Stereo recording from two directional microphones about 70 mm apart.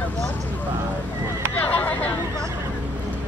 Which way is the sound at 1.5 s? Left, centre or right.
Left.